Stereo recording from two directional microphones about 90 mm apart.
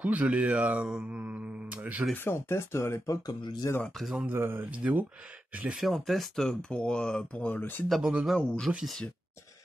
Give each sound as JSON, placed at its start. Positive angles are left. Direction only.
{"t": 0.0, "sound": "speech", "side_deg": -15}
{"t": 1.2, "sound": "mantra", "side_deg": -15}
{"t": 2.2, "sound": "speech", "side_deg": 30}
{"t": 4.2, "sound": "speech", "side_deg": -25}
{"t": 5.6, "sound": "speech", "side_deg": -5}
{"t": 7.9, "sound": "speech", "side_deg": -10}
{"t": 8.4, "sound": "speech", "side_deg": 5}